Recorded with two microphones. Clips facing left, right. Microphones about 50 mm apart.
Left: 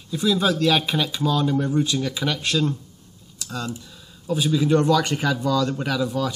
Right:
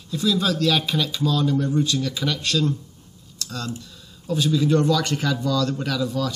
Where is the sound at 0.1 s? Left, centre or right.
Centre.